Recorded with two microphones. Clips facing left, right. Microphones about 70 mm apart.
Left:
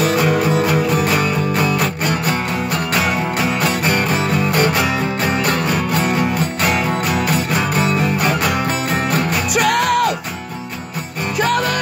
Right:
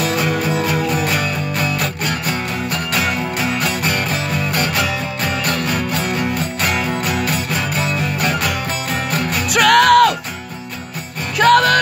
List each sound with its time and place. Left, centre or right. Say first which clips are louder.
1.1 s music: left 3 dB; left
9.5 s music: right 6 dB; right
11.3 s music: right 6 dB; right